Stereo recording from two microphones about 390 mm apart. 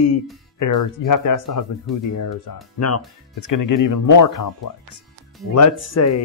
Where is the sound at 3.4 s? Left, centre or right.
Left.